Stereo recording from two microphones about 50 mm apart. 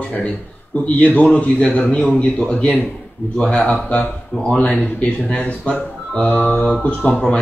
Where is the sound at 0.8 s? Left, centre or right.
Left.